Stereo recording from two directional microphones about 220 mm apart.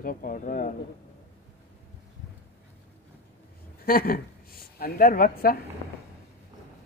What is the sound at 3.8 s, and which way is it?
A woman's voice, 40° left (ahead or behind).